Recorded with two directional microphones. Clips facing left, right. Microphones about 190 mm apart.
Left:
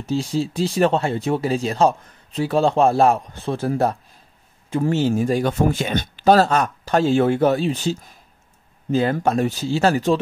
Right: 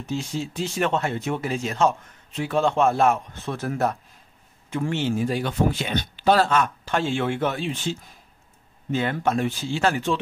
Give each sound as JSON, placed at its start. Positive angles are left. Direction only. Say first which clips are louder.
{"t": 0.0, "sound": "speech", "louder": "left 6 dB", "side_deg": 35}